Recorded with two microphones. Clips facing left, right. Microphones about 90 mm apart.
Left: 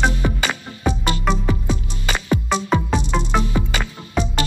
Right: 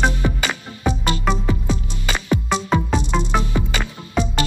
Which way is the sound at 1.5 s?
20° left (ahead or behind).